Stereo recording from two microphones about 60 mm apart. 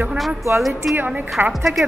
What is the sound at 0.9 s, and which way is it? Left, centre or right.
Speech, right.